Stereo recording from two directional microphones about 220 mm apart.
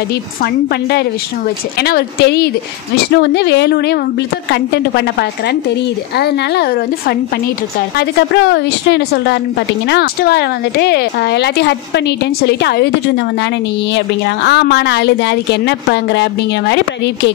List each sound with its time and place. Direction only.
0.4 s a woman's voice: 45° left (ahead or behind)
6.1 s a woman's voice: 45° left (ahead or behind)
13.9 s a woman's voice: 55° left (ahead or behind)